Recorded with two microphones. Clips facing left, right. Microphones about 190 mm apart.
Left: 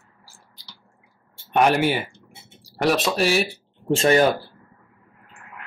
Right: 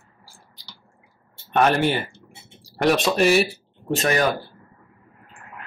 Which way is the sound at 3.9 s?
30° left (ahead or behind).